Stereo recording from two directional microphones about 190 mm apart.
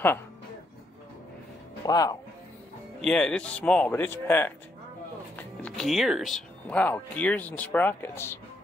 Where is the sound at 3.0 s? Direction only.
5° left (ahead or behind).